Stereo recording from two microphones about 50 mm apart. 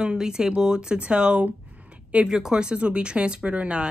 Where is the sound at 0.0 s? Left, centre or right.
Centre.